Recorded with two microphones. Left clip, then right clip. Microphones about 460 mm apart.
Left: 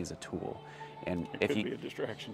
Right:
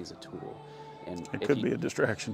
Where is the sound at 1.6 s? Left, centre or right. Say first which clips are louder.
Right 9 dB; right.